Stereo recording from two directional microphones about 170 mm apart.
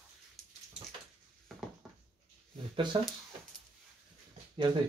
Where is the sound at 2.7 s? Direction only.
30° right (ahead or behind).